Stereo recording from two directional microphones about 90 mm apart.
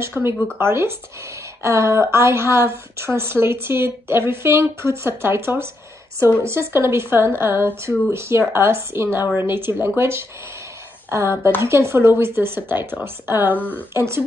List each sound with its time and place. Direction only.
0.0 s a woman's voice: 25° right (ahead or behind)
13.6 s speech: 20° left (ahead or behind)
13.9 s a woman's voice: 30° right (ahead or behind)